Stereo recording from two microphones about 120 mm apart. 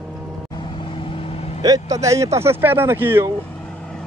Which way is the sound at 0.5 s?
40° left (ahead or behind).